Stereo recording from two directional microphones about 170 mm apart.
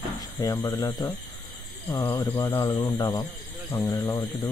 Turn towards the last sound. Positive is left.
turn(degrees=20)  # may be behind; listen again after turning